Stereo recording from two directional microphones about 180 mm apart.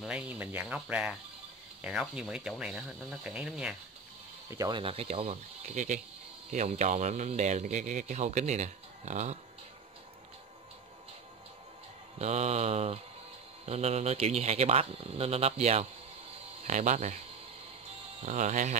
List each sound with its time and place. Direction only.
0.0 s speech: 5° right (ahead or behind)
4.6 s speech: 25° right (ahead or behind)
12.2 s speech: 40° right (ahead or behind)
18.2 s speech: 45° right (ahead or behind)